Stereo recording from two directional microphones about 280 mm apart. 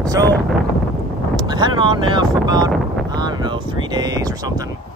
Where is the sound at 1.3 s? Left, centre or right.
Centre.